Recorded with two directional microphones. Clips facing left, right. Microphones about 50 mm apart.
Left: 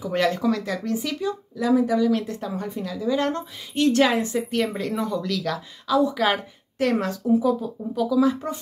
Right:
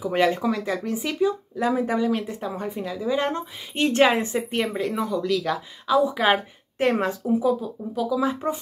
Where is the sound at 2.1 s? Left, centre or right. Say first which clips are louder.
Left 2 dB; centre.